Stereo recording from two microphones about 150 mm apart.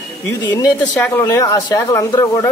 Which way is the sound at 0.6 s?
25° left (ahead or behind).